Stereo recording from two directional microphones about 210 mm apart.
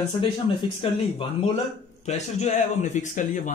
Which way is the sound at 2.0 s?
30° left (ahead or behind).